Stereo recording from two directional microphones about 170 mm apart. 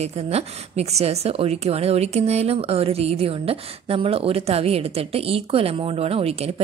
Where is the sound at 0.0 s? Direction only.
40° right (ahead or behind).